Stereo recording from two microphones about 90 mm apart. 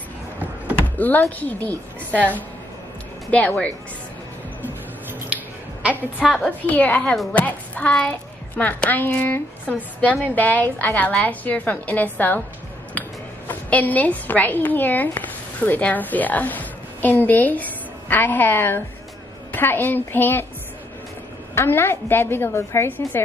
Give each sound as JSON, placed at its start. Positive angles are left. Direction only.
{"t": 0.8, "sound": "a sound", "side_deg": 20}
{"t": 1.4, "sound": "a woman's voice", "side_deg": 20}
{"t": 5.3, "sound": "a sound", "side_deg": -15}
{"t": 6.2, "sound": "a woman's voice", "side_deg": 0}
{"t": 6.7, "sound": "a woman's voice", "side_deg": 15}
{"t": 13.5, "sound": "a woman's voice", "side_deg": 15}
{"t": 21.5, "sound": "a woman's voice", "side_deg": 25}